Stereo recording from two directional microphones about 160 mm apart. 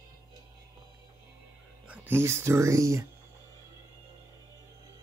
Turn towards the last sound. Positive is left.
turn(degrees=-20)  # may be behind; listen again after turning